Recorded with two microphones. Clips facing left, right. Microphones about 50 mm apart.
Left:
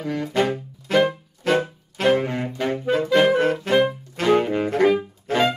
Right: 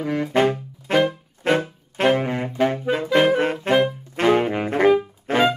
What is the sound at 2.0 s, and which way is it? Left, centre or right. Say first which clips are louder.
Saxophone: even; centre.